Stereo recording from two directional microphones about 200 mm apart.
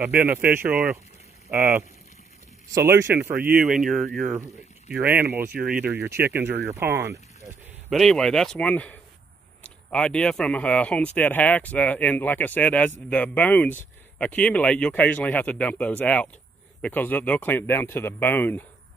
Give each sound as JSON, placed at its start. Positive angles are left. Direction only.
{"t": 0.0, "sound": "speech", "side_deg": -10}
{"t": 2.7, "sound": "speech", "side_deg": -15}
{"t": 7.9, "sound": "speech", "side_deg": 0}